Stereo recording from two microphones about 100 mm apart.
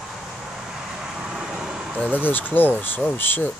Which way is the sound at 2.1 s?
20° left (ahead or behind).